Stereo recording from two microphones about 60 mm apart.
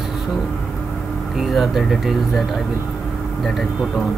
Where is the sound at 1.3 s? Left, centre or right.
Centre.